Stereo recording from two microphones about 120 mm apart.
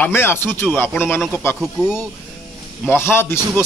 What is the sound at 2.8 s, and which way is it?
Speech, 20° left (ahead or behind).